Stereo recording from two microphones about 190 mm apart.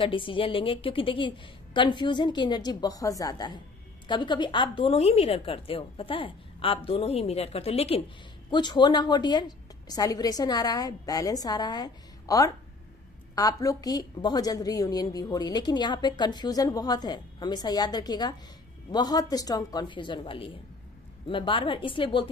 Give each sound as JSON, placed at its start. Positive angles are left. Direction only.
{"t": 0.0, "sound": "a woman's voice", "side_deg": 25}